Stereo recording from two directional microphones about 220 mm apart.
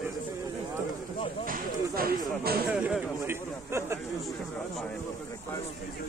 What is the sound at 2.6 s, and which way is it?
Speech, 5° right (ahead or behind).